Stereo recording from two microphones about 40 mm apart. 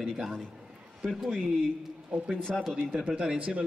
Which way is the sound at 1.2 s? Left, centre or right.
Centre.